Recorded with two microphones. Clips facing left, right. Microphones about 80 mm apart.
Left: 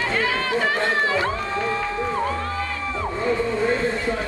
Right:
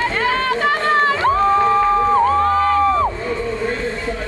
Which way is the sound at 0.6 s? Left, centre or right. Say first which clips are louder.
Right 3 dB; right.